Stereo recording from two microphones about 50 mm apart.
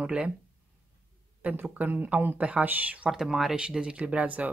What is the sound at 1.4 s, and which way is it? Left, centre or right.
Speech, right.